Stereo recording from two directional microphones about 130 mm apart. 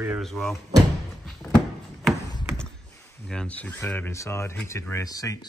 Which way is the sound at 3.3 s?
10° left (ahead or behind).